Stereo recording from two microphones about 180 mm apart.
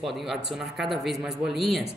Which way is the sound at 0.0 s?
Centre (ahead or behind).